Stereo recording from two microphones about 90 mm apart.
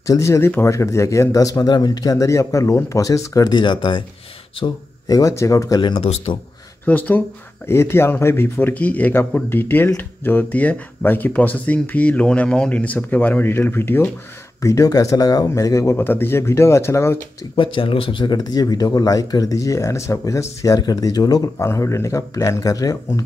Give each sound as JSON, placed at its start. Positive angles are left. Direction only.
{"t": 0.0, "sound": "a man's voice", "side_deg": 35}
{"t": 3.5, "sound": "speech", "side_deg": 60}
{"t": 4.6, "sound": "a man's voice", "side_deg": 45}
{"t": 5.8, "sound": "speech", "side_deg": 75}
{"t": 6.9, "sound": "speech", "side_deg": 20}
{"t": 14.6, "sound": "a man's voice", "side_deg": 40}
{"t": 17.6, "sound": "speech", "side_deg": 70}
{"t": 21.6, "sound": "a man's voice", "side_deg": 30}